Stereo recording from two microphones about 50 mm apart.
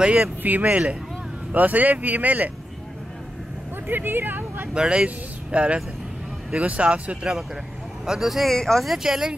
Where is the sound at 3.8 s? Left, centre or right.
Right.